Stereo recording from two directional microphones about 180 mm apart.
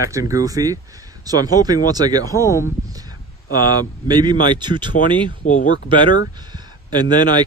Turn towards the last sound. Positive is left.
turn(degrees=-25)  # may be behind; listen again after turning